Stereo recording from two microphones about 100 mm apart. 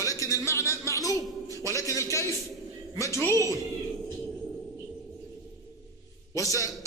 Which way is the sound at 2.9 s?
30° left (ahead or behind).